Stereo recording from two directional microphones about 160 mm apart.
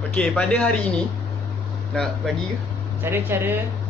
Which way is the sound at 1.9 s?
5° left (ahead or behind).